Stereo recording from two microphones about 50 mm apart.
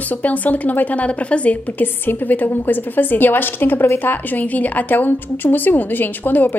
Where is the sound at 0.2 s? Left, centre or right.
Left.